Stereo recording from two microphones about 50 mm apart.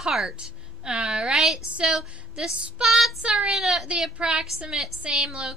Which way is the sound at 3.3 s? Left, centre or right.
Centre.